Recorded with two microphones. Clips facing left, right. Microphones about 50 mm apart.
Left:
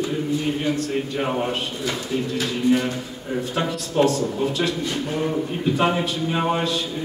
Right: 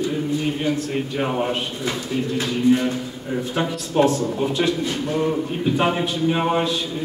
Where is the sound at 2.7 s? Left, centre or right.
Centre.